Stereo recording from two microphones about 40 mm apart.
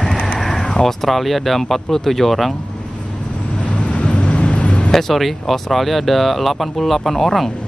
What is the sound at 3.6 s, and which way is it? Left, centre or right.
Vehicle, left.